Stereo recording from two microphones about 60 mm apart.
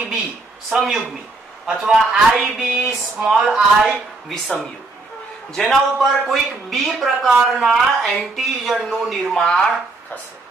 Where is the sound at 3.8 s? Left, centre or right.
Centre.